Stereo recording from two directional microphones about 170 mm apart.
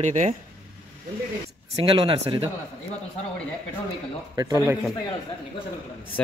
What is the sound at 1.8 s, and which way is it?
Speech, 30° right (ahead or behind).